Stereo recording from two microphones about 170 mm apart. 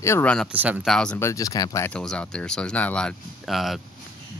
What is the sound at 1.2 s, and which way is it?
Speech, 20° left (ahead or behind).